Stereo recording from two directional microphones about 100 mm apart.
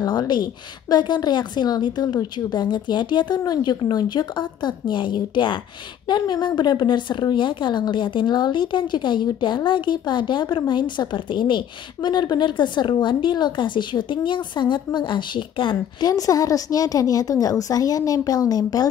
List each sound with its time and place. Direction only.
0.0 s speech: 45° left (ahead or behind)
16.0 s a woman's voice: 35° left (ahead or behind)